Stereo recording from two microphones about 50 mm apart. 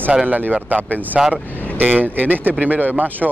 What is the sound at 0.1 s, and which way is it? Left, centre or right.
Speech, right.